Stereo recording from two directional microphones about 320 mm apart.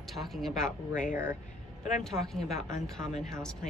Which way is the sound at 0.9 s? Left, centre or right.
Left.